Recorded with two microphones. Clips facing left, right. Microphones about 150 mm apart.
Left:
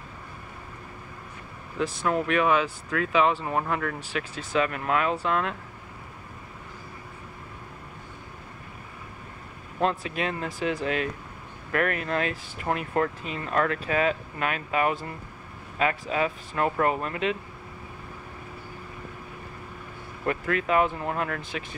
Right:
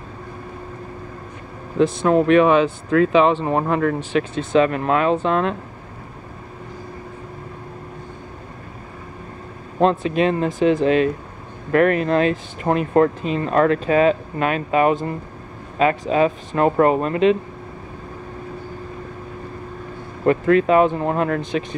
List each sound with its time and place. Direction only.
1.8 s speech: 25° right (ahead or behind)
9.8 s speech: 25° right (ahead or behind)
20.2 s speech: 30° right (ahead or behind)